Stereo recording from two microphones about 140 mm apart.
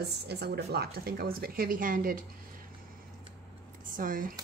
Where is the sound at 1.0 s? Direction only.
90° right.